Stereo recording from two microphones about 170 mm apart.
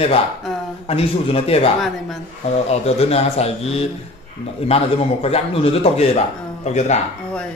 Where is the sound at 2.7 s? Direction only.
35° left (ahead or behind).